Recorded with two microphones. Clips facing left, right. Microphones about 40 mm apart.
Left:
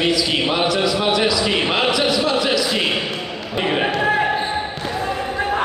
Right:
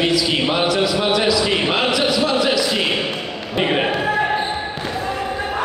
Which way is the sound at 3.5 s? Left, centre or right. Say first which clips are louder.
Right 2 dB; centre.